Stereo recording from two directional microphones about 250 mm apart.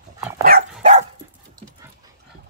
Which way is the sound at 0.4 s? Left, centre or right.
Right.